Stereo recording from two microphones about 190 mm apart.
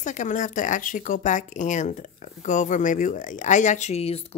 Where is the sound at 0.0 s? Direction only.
40° left (ahead or behind).